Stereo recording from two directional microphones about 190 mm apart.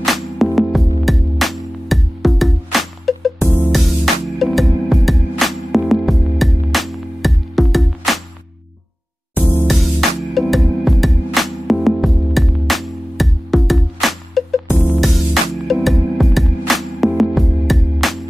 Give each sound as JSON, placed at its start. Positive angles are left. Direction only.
{"t": 0.0, "sound": "music", "side_deg": 0}
{"t": 9.7, "sound": "music", "side_deg": 0}